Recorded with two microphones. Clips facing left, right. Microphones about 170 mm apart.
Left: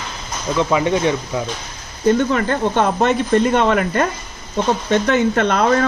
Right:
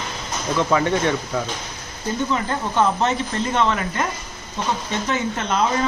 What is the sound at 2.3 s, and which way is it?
Speech, 65° left (ahead or behind).